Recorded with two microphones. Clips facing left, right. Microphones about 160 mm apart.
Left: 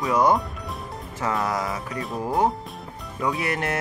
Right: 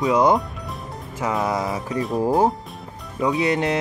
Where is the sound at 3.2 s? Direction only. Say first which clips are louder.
Right 6 dB; 20° right (ahead or behind).